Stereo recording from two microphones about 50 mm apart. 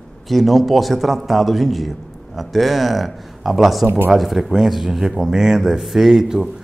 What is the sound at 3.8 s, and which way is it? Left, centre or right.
Speech, right.